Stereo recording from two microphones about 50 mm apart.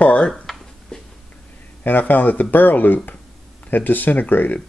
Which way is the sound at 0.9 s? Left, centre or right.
Centre.